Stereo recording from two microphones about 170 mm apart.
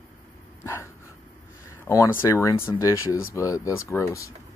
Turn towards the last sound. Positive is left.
turn(degrees=15)  # may be behind; listen again after turning